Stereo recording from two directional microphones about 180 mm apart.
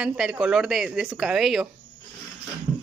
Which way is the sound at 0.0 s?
5° right (ahead or behind).